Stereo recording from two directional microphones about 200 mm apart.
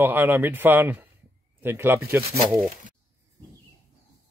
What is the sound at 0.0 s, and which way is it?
Speech, 10° right (ahead or behind).